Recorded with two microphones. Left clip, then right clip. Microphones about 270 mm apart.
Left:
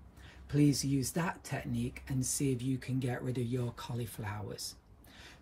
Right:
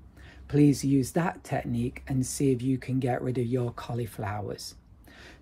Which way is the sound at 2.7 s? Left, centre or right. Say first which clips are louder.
Right 9 dB; centre.